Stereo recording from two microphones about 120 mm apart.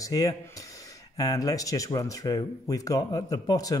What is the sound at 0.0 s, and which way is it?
Speech, 30° left (ahead or behind).